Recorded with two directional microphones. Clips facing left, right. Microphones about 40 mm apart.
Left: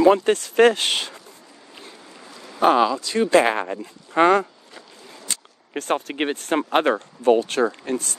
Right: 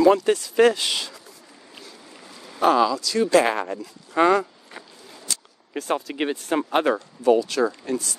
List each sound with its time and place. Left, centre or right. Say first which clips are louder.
0.0 s speech: left 1 dB; left
2.6 s speech: left 1 dB; left